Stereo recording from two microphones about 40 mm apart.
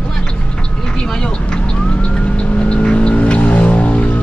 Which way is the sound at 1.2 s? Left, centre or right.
Left.